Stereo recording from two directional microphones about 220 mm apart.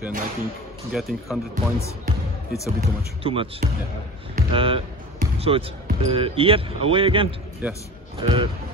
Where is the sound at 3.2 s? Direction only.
25° right (ahead or behind).